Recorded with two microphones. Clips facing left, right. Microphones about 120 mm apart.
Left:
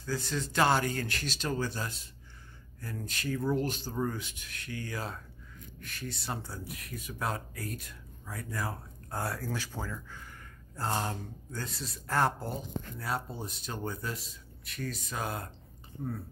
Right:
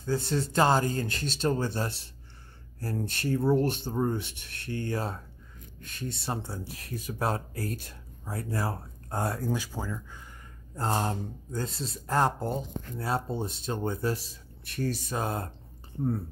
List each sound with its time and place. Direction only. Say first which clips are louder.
0.0 s speech: right 6 dB; 30° right (ahead or behind); by 10.2 s 15° right (ahead or behind)
10.8 s speech: right 4 dB; 30° right (ahead or behind)